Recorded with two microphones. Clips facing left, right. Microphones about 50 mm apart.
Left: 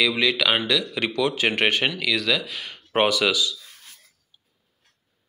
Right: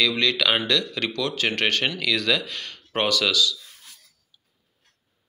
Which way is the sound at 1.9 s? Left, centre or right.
Centre.